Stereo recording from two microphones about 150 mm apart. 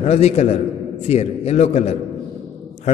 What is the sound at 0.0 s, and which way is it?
A man's voice, 45° left (ahead or behind).